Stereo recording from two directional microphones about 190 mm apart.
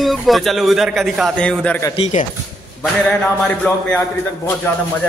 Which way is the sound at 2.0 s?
35° left (ahead or behind).